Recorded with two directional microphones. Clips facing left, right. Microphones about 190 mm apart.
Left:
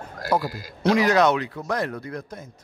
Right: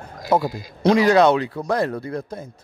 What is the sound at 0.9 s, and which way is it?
Speech, 30° right (ahead or behind).